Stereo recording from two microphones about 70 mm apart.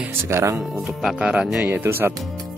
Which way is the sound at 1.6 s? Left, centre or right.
Right.